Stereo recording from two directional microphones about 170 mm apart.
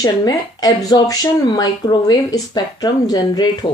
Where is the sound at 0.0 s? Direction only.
20° left (ahead or behind).